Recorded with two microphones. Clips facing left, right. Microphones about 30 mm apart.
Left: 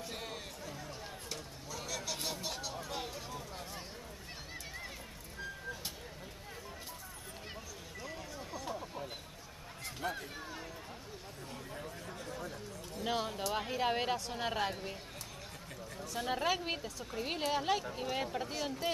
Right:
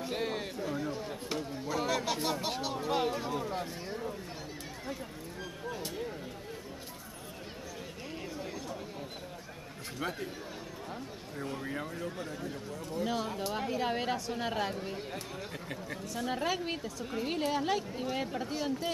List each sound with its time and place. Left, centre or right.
0.1 s a sound: right
1.3 s speech: right
10.0 s speech: right
11.7 s speech: right
13.0 s speech: centre
16.2 s speech: centre